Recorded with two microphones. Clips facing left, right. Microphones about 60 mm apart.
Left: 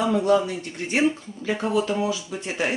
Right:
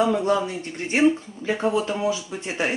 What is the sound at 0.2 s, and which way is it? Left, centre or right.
Speech, right.